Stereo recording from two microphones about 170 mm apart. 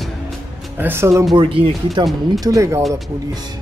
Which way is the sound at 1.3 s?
30° right (ahead or behind).